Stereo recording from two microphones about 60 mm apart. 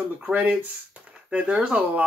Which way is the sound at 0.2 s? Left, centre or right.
Right.